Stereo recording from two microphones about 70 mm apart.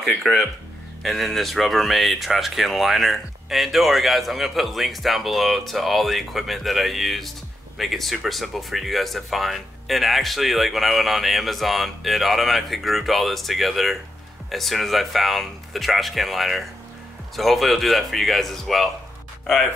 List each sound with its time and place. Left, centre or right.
0.2 s speech: centre